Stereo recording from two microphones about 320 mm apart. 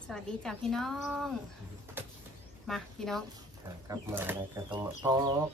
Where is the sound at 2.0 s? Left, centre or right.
Centre.